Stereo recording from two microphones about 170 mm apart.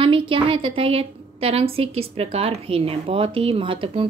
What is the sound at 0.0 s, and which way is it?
A woman's voice, 30° right (ahead or behind).